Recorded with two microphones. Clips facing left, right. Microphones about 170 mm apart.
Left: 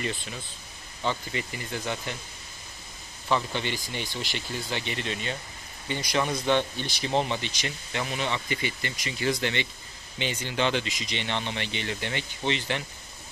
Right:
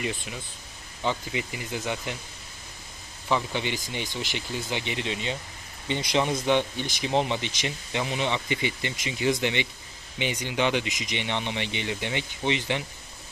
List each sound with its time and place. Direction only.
0.0 s speech: 15° right (ahead or behind)
3.3 s speech: 15° right (ahead or behind)